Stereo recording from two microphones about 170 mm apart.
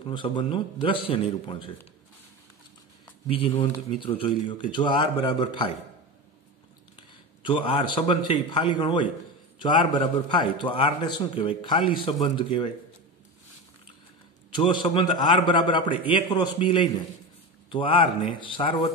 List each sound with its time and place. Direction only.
0.1 s a man's voice: 30° left (ahead or behind)
3.3 s a man's voice: 35° left (ahead or behind)
7.4 s a man's voice: 30° left (ahead or behind)
14.6 s a man's voice: 25° left (ahead or behind)